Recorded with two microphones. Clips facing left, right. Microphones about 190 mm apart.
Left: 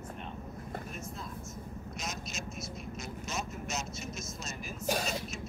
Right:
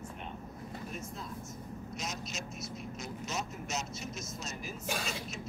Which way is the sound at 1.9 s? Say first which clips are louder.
Even; 50° left (ahead or behind).